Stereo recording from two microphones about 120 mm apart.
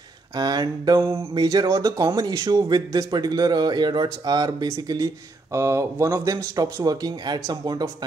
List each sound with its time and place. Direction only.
0.4 s speech: 35° right (ahead or behind)
0.9 s speech: 20° right (ahead or behind)
1.3 s speech: 30° right (ahead or behind)